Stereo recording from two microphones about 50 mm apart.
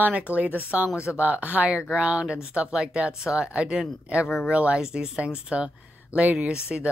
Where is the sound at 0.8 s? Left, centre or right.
Left.